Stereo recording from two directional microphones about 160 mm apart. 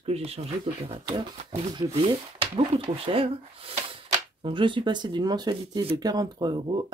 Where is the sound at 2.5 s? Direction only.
35° right (ahead or behind).